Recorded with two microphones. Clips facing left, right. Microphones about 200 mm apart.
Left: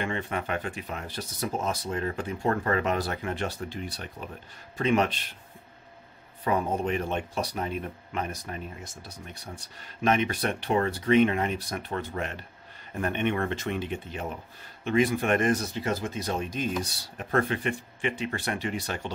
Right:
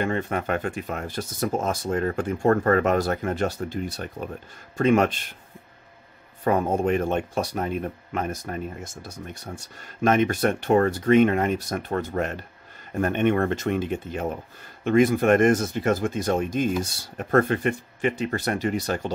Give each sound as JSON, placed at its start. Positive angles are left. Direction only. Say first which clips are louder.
{"t": 0.0, "sound": "speech", "louder": "right 5 dB", "side_deg": -45}
{"t": 6.4, "sound": "speech", "louder": "right 5 dB", "side_deg": -50}